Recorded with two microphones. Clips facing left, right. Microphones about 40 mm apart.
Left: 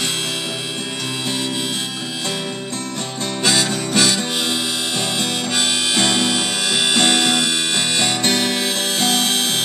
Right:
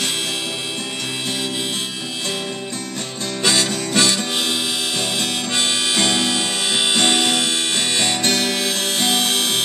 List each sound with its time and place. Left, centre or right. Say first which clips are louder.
3.4 s harmonica: even; centre
7.1 s music: left 1 dB; centre